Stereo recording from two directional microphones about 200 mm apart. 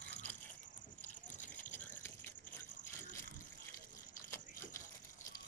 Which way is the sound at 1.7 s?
10° left (ahead or behind).